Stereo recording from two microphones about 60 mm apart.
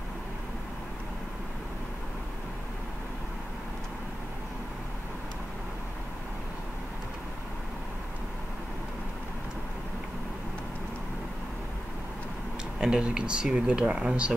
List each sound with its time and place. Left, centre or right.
12.8 s speech: centre